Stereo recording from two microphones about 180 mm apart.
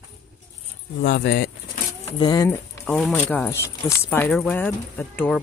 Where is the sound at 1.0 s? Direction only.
65° left (ahead or behind).